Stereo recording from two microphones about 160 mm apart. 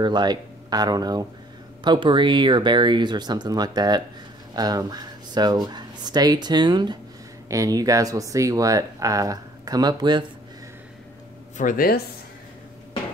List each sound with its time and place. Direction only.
0.0 s speech: 25° right (ahead or behind)
11.5 s speech: 60° left (ahead or behind)